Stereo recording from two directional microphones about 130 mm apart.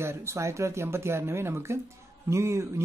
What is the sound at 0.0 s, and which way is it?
Speech, 20° right (ahead or behind).